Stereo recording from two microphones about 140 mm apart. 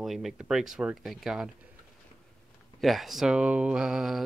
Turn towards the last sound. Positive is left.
turn(degrees=-5)  # may be behind; listen again after turning